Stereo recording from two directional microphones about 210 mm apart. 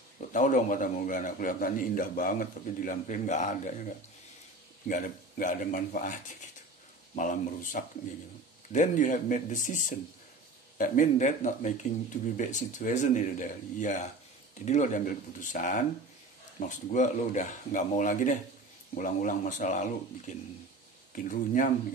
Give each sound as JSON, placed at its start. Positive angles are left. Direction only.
{"t": 0.2, "sound": "a man's voice", "side_deg": 35}
{"t": 7.2, "sound": "a man's voice", "side_deg": 40}